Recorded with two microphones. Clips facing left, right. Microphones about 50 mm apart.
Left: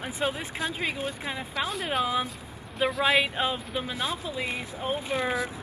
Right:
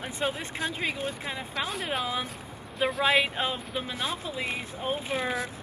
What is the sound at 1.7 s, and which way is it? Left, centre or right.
Speech, centre.